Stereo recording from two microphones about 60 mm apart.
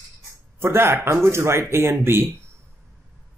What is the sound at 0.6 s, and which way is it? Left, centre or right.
Speech, right.